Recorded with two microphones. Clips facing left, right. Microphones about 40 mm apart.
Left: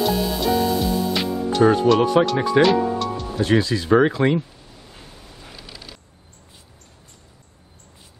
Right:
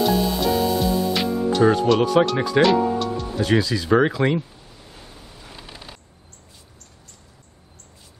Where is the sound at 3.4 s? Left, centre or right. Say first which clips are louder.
Left 1 dB; centre.